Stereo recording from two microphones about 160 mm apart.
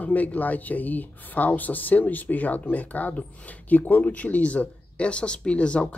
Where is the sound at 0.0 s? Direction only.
10° left (ahead or behind).